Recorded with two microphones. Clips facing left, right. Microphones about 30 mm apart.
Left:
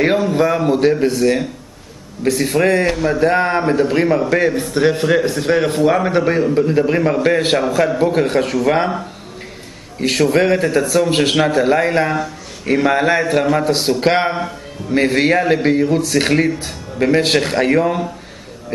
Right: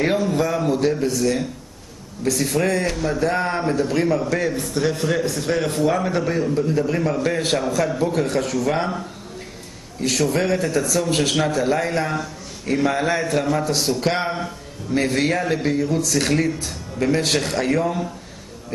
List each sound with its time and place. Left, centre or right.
0.0 s a man's voice: left